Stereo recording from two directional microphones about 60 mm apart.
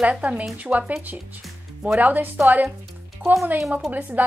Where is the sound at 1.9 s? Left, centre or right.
Right.